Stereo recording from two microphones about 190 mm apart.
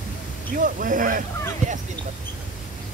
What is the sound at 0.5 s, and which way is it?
Speech, 45° right (ahead or behind).